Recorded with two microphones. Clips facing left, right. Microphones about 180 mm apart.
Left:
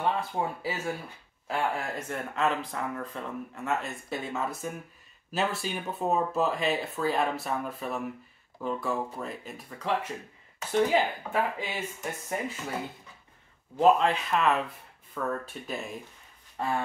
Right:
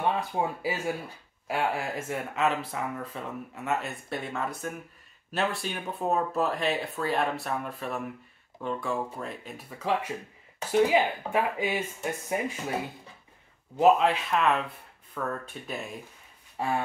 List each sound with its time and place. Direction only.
0.3 s speech: 15° right (ahead or behind)
13.7 s speech: 5° right (ahead or behind)
16.5 s a sound: 10° right (ahead or behind)